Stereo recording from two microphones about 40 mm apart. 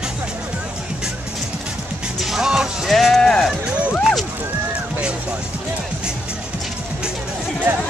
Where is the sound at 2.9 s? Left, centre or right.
Centre.